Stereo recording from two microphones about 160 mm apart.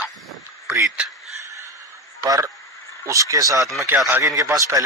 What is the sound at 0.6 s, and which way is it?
Speech, 20° right (ahead or behind).